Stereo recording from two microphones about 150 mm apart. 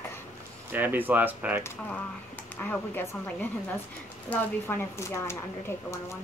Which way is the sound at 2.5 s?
10° left (ahead or behind).